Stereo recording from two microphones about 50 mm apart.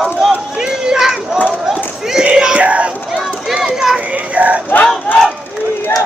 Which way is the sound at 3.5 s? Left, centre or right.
Centre.